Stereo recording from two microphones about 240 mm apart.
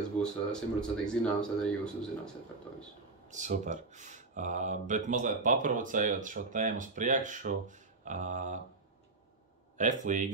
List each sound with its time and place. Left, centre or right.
0.2 s speech: centre
3.3 s speech: right
9.8 s speech: right